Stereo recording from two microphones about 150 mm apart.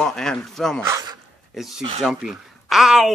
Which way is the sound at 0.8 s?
20° right (ahead or behind).